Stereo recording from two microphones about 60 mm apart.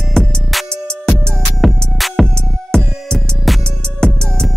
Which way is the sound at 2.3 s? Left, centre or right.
Centre.